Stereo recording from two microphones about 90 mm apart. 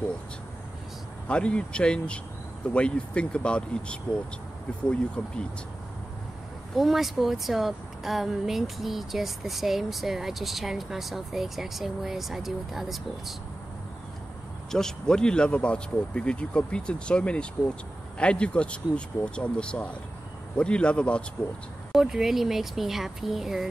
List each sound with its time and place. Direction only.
1.2 s speech: 10° left (ahead or behind)
6.7 s speech: centre (ahead or behind)
14.7 s speech: 5° left (ahead or behind)
21.9 s speech: 5° right (ahead or behind)